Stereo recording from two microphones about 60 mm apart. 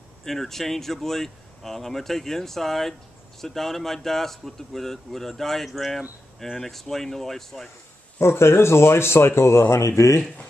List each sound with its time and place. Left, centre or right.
0.2 s speech: centre
8.2 s speech: left